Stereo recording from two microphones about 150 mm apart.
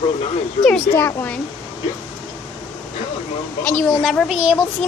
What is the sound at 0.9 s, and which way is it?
Speech, 15° left (ahead or behind).